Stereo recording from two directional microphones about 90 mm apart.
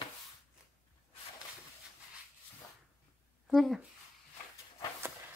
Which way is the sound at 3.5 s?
Centre (ahead or behind).